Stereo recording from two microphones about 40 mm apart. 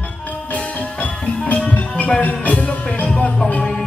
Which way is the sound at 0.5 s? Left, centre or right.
Left.